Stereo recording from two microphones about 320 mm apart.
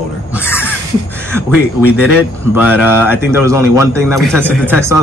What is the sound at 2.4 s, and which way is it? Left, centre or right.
A man's voice, centre.